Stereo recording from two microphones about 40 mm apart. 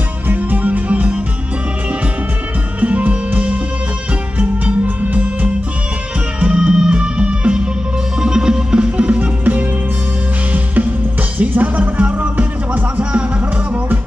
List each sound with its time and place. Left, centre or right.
0.3 s music: right
2.8 s music: right
4.8 s music: right
6.4 s music: right